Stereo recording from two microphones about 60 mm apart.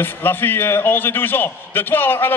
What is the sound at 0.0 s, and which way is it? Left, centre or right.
A man's voice, left.